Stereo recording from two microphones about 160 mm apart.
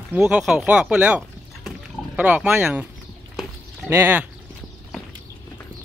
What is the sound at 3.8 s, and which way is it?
Speech, 15° right (ahead or behind).